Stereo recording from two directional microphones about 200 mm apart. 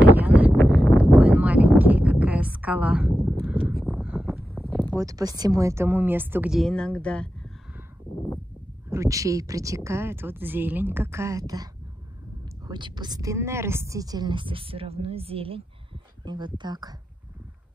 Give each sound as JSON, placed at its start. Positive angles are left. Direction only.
{"t": 0.1, "sound": "a sound", "side_deg": -10}
{"t": 4.9, "sound": "a woman's voice", "side_deg": -15}
{"t": 8.9, "sound": "a woman's voice", "side_deg": -15}